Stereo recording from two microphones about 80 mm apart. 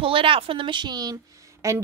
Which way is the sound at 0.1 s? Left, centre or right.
Right.